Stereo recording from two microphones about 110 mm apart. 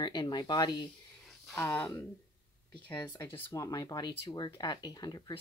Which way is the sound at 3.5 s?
30° left (ahead or behind).